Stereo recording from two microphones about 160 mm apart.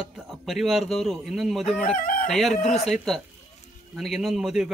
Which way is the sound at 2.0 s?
60° left (ahead or behind).